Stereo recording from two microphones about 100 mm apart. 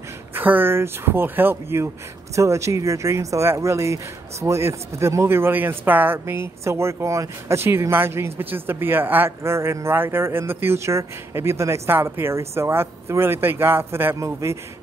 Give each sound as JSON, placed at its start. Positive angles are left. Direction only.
{"t": 0.3, "sound": "speech", "side_deg": -20}